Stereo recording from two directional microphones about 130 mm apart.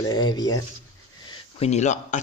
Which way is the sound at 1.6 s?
60° left (ahead or behind).